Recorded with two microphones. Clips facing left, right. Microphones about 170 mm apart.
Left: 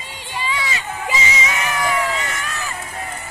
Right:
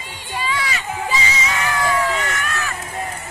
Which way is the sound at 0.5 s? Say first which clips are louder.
Right 1 dB; 20° left (ahead or behind).